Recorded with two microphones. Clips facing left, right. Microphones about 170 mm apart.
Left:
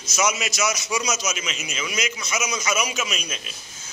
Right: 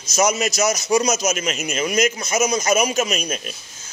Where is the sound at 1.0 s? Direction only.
55° right (ahead or behind).